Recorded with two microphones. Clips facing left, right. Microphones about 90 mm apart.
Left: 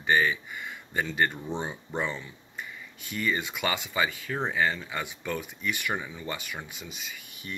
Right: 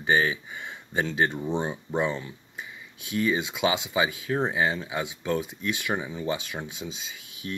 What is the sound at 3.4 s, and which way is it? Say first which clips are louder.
Speech: right 4 dB; 15° right (ahead or behind).